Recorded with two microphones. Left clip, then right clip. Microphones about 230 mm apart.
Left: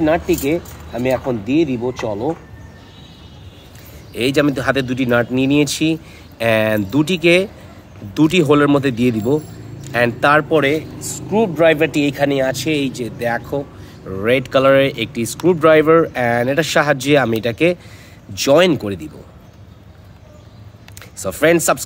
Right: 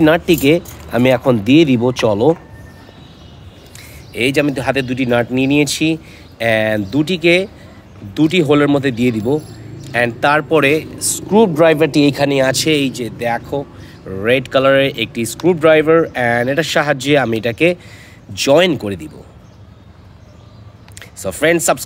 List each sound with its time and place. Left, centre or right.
0.0 s speech: right
4.1 s speech: centre
10.5 s a man's voice: centre
11.1 s speech: right
13.2 s speech: centre
21.0 s speech: centre